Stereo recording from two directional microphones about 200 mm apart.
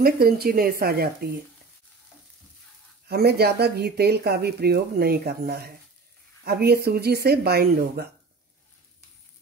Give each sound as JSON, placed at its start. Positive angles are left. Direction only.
{"t": 0.0, "sound": "speech", "side_deg": -50}
{"t": 3.1, "sound": "speech", "side_deg": -50}